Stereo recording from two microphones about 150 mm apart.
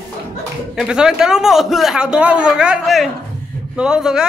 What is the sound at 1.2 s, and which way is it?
A man's voice, 5° right (ahead or behind).